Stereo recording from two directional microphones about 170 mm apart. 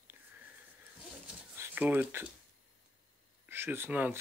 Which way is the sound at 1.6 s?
10° right (ahead or behind).